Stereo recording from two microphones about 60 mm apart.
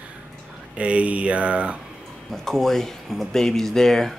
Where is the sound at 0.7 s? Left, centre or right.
Right.